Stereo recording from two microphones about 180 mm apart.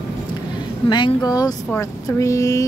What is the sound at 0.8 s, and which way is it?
Speech, 25° left (ahead or behind).